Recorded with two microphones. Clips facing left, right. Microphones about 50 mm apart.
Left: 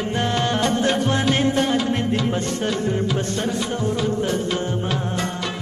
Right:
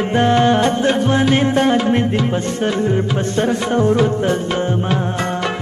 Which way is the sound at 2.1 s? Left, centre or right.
Right.